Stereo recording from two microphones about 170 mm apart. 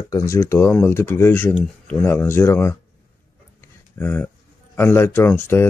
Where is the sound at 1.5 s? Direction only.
5° left (ahead or behind).